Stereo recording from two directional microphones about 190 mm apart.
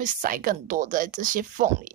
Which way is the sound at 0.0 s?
45° right (ahead or behind).